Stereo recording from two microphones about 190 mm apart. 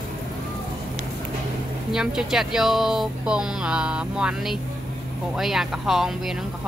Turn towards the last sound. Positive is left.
turn(degrees=0)  # may be behind; listen again after turning